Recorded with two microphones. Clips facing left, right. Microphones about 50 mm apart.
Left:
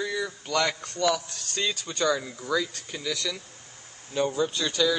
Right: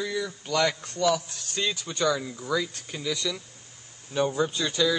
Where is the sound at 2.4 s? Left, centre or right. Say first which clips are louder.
Left 1 dB; centre.